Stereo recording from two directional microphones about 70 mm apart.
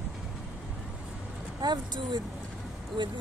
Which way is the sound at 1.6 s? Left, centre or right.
Right.